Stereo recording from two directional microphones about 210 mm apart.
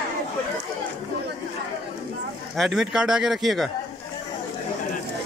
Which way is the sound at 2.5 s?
Centre (ahead or behind).